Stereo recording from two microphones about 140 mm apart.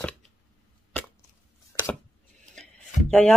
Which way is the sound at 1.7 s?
20° left (ahead or behind).